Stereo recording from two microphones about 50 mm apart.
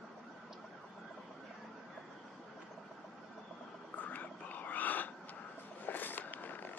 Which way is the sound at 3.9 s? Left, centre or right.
Left.